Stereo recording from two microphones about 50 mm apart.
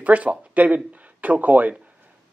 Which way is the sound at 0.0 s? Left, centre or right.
Right.